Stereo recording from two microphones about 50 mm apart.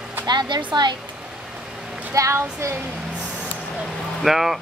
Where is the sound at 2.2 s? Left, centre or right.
Right.